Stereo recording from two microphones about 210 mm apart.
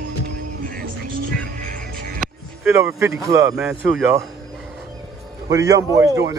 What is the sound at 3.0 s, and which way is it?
Speech, 15° right (ahead or behind).